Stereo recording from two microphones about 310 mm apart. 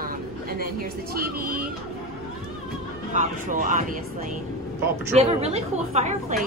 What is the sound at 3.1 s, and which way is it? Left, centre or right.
Speech, right.